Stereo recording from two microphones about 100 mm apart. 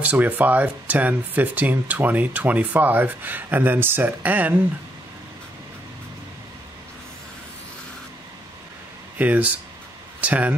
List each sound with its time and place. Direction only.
0.0 s speech: 15° right (ahead or behind)
9.2 s speech: 15° right (ahead or behind)